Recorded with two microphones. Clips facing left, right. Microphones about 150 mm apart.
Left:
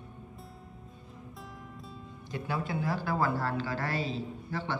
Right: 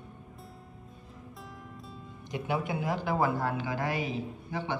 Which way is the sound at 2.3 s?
20° right (ahead or behind).